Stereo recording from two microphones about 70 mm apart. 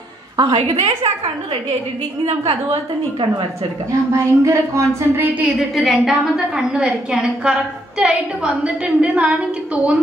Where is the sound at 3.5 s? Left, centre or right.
Right.